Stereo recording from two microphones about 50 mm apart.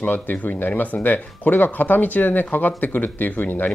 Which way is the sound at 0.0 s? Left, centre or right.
Left.